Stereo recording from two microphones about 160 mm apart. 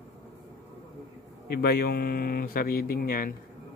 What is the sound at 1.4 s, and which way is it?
Speech, 75° left (ahead or behind).